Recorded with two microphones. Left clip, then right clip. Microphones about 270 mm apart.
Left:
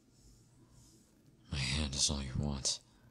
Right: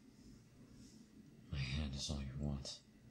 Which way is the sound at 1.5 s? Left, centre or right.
Left.